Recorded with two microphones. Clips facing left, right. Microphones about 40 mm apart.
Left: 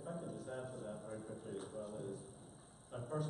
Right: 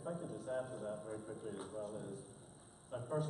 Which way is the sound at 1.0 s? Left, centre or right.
Centre.